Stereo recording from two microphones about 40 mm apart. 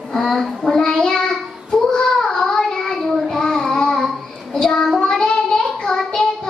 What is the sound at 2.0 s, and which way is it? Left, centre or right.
Child singing, centre.